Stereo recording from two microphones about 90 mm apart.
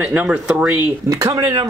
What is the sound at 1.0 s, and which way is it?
Speech, 40° right (ahead or behind).